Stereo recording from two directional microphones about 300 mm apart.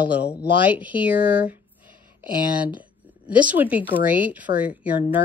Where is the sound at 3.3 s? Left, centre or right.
Centre.